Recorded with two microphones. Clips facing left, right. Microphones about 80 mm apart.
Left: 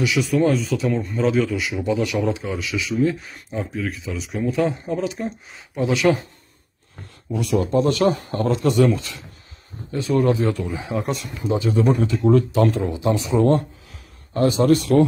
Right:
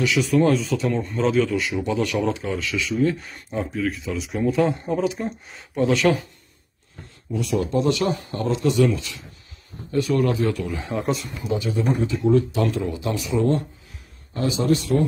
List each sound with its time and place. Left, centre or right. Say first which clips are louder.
0.0 s speech: even; centre
7.5 s a man's voice: left 2 dB; left
9.9 s a man's voice: left 1 dB; left
10.8 s speech: even; centre
11.4 s a man's voice: left 4 dB; left
11.7 s a man's voice: left 4 dB; left
12.9 s a man's voice: left 4 dB; left
13.4 s speech: left 2 dB; left